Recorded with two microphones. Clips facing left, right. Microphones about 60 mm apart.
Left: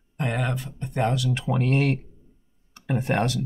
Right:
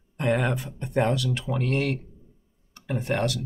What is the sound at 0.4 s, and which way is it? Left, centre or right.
Speech, centre.